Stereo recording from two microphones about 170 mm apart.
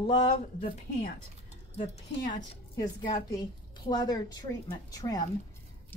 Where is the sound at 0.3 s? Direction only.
55° left (ahead or behind).